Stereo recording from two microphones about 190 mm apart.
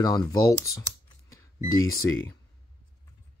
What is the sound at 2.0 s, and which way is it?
Speech, 10° left (ahead or behind).